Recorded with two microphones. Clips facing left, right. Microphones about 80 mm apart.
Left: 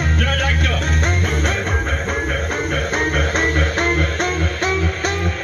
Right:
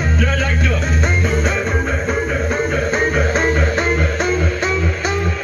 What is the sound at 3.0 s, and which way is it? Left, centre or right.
Music, centre.